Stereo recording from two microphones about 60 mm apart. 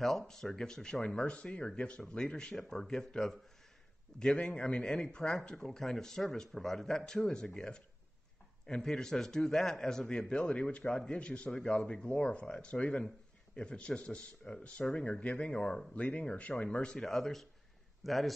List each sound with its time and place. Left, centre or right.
0.0 s speech: centre
4.4 s speech: centre
17.0 s speech: centre